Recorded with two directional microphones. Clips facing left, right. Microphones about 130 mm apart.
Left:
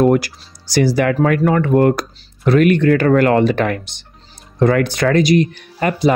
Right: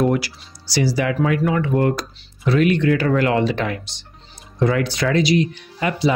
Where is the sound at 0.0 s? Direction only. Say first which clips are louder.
Left 5 dB; 50° left (ahead or behind).